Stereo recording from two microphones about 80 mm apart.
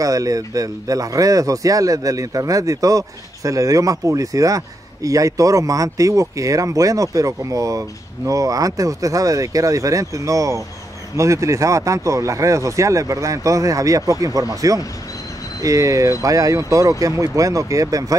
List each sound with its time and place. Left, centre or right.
0.0 s speech: right